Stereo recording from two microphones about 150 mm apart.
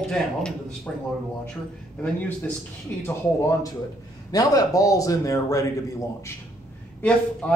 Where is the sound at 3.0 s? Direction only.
20° left (ahead or behind).